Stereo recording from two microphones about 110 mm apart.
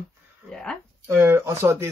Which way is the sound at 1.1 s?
20° right (ahead or behind).